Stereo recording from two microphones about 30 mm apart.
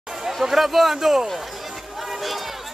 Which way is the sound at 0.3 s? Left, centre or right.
Centre.